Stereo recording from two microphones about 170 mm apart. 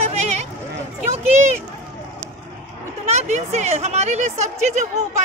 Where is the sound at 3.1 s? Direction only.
40° right (ahead or behind).